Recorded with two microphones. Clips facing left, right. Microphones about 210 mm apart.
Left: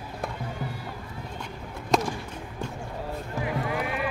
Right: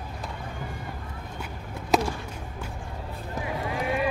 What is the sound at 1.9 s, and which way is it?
Basketball bounce, 5° right (ahead or behind).